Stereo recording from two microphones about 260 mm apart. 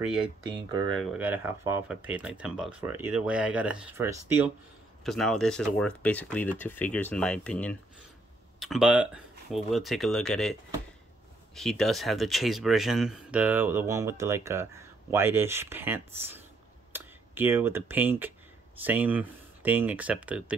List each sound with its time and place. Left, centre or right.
0.5 s speech: centre
0.9 s speech: centre
5.0 s speech: centre